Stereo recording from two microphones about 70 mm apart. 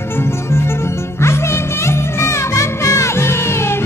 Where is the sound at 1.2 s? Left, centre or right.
Left.